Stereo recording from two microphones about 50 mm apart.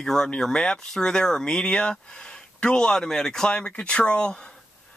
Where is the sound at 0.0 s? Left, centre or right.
Centre.